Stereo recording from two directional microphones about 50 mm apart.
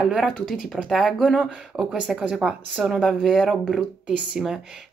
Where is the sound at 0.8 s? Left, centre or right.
Centre.